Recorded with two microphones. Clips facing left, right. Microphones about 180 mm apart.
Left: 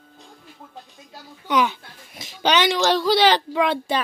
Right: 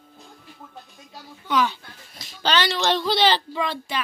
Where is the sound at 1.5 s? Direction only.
15° left (ahead or behind).